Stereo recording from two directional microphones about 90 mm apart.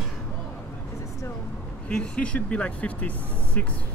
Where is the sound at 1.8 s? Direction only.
10° left (ahead or behind).